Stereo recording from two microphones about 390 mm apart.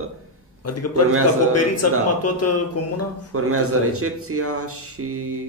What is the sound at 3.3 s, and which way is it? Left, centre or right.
Speech, right.